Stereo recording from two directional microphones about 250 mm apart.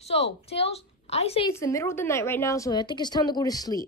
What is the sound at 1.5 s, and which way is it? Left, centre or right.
A woman's voice, centre.